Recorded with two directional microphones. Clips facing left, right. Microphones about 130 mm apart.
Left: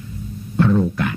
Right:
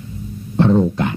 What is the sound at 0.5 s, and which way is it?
Speech, 30° right (ahead or behind).